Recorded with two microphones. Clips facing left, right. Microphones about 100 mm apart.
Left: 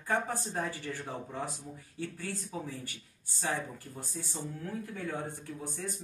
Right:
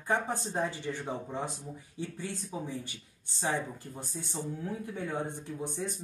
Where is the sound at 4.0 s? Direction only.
20° right (ahead or behind).